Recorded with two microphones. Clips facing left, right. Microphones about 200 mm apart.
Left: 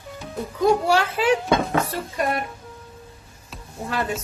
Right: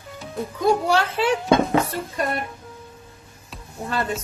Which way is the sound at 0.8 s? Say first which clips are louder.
Left 1 dB; 10° left (ahead or behind).